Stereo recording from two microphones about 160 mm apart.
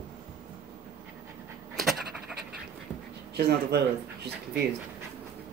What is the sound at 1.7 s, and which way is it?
Pant, centre (ahead or behind).